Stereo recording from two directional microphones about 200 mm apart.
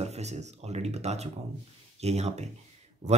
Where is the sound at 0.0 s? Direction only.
35° right (ahead or behind).